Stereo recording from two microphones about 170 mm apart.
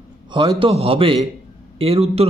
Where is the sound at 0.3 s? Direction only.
30° right (ahead or behind).